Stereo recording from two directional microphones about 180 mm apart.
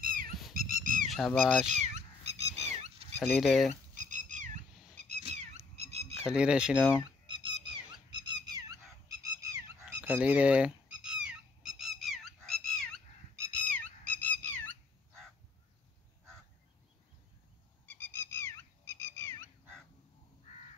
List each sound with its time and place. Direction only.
0.0 s a sound: 50° right (ahead or behind)
0.6 s dog: 50° right (ahead or behind)
1.0 s speech: centre (ahead or behind)
1.7 s cat: 40° right (ahead or behind)
3.2 s speech: centre (ahead or behind)
3.9 s frog: 45° right (ahead or behind)
4.9 s cat: 40° right (ahead or behind)
5.8 s a sound: 35° right (ahead or behind)
6.2 s speech: 5° right (ahead or behind)
7.2 s goose: 25° right (ahead or behind)
9.9 s fowl: 10° right (ahead or behind)
13.5 s a sound: 10° left (ahead or behind)
17.8 s a sound: 10° left (ahead or behind)
18.9 s frog: 15° left (ahead or behind)